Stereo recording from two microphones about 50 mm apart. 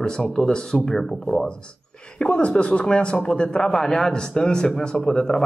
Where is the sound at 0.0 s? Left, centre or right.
Centre.